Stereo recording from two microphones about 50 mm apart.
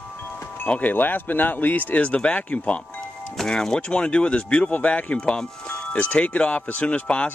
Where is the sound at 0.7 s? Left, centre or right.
Left.